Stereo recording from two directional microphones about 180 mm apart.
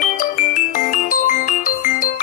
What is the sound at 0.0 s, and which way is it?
Music, 45° left (ahead or behind).